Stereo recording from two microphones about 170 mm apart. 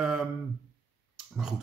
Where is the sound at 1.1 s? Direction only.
5° right (ahead or behind).